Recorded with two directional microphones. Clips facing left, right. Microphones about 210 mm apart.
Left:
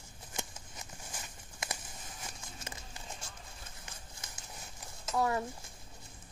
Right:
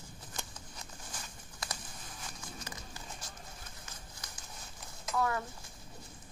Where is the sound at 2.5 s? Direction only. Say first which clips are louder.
Right 1 dB; 25° left (ahead or behind).